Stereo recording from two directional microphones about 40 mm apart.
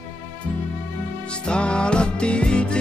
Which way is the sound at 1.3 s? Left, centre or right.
Left.